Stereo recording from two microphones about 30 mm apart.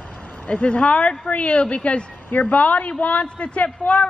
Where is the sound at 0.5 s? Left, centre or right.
Left.